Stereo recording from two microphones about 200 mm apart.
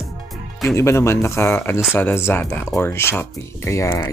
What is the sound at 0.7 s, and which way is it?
Speech, 15° left (ahead or behind).